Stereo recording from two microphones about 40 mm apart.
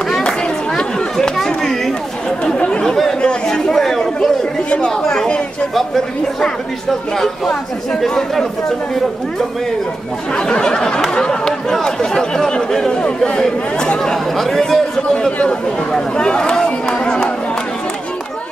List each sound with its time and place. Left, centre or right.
1.2 s chatter: centre
2.4 s chatter: left
2.8 s chatter: centre
4.6 s chatter: left
5.8 s speech: centre
10.3 s a sound: centre
11.7 s speech: centre
13.0 s a sound: left
13.4 s speech: centre
14.1 s speech: centre
15.9 s speech: left